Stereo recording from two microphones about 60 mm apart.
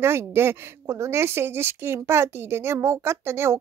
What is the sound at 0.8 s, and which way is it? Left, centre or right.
Speech, right.